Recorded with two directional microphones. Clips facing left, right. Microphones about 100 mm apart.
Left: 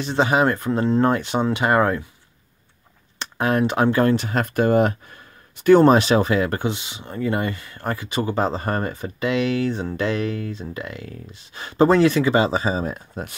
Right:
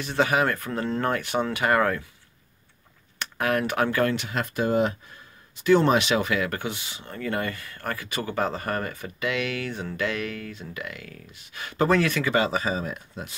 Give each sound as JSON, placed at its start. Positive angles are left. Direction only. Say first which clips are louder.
{"t": 0.0, "sound": "speech", "louder": "left 4 dB", "side_deg": 25}
{"t": 3.2, "sound": "speech", "louder": "left 5 dB", "side_deg": 25}
{"t": 5.6, "sound": "speech", "louder": "left 6 dB", "side_deg": 45}